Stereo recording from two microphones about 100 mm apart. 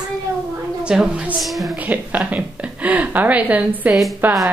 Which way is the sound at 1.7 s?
15° right (ahead or behind).